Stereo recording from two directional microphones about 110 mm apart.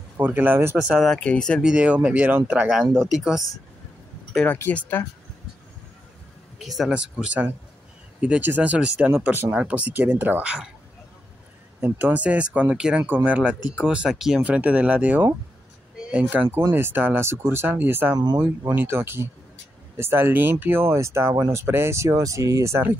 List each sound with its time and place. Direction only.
0.2 s speech: 15° right (ahead or behind)
0.7 s speech: centre (ahead or behind)
1.6 s speech: 10° right (ahead or behind)
3.0 s speech: 5° right (ahead or behind)
4.5 s speech: 15° left (ahead or behind)
6.6 s speech: centre (ahead or behind)
11.8 s speech: 15° right (ahead or behind)
18.1 s speech: 40° right (ahead or behind)
18.8 s speech: 20° right (ahead or behind)